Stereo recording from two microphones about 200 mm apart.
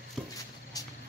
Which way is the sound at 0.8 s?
20° left (ahead or behind).